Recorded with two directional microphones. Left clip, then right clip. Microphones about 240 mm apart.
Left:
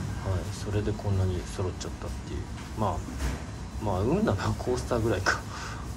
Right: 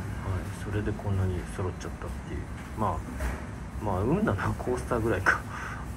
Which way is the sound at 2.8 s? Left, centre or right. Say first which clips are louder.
Even; centre.